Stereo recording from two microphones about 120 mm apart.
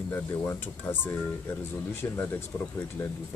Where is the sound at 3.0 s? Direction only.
25° left (ahead or behind).